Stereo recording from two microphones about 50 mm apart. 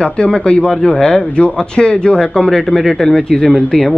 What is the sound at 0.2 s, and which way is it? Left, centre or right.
Speech, left.